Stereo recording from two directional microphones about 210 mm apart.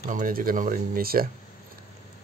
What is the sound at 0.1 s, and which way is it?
Speech, 40° right (ahead or behind).